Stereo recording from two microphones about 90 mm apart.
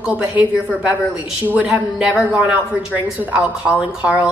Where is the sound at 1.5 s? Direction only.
10° right (ahead or behind).